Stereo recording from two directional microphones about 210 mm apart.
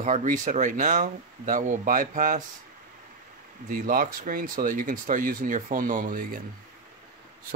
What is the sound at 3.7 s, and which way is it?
Speech, 40° right (ahead or behind).